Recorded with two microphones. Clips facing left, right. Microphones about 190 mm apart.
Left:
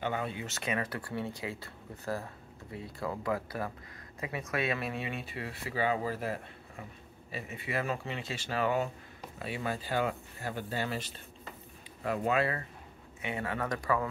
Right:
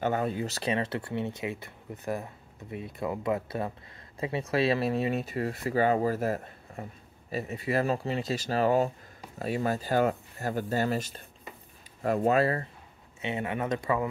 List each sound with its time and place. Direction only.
0.0 s speech: 45° right (ahead or behind)
13.2 s speech: 20° right (ahead or behind)